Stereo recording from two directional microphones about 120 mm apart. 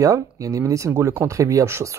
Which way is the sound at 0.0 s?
30° right (ahead or behind).